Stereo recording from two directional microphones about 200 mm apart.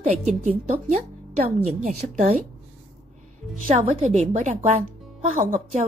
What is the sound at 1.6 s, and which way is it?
Speech, 35° right (ahead or behind).